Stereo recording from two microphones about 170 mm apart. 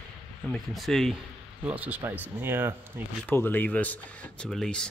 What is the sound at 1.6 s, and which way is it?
Speech, 10° right (ahead or behind).